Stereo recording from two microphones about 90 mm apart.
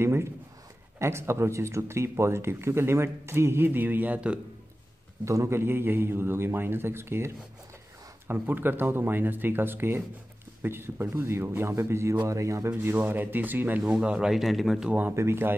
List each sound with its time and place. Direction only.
0.0 s a sound: 30° right (ahead or behind)
0.9 s speech: 30° right (ahead or behind); by 4.4 s 15° right (ahead or behind)
5.2 s speech: 35° right (ahead or behind)
13.8 s speech: 10° right (ahead or behind)
14.9 s speech: 20° right (ahead or behind)